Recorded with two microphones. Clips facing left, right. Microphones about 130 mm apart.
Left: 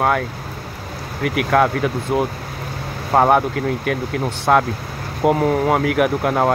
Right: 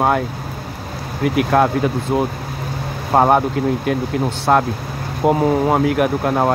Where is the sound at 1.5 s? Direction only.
20° right (ahead or behind).